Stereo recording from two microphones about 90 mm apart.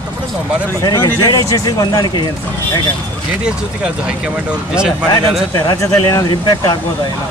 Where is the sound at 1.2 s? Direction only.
40° left (ahead or behind).